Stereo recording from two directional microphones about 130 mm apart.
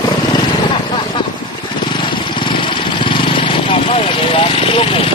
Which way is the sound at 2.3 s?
40° left (ahead or behind).